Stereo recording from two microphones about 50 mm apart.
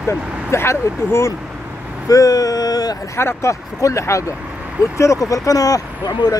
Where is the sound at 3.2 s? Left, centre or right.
Left.